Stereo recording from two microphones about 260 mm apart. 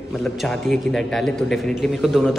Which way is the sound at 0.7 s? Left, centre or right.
Centre.